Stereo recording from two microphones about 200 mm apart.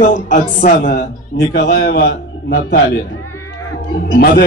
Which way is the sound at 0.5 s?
55° left (ahead or behind).